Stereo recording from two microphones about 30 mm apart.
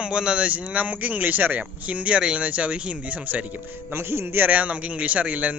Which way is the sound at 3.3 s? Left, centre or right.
Right.